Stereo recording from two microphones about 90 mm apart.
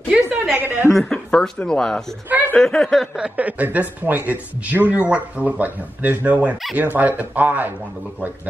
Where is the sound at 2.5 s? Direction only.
5° left (ahead or behind).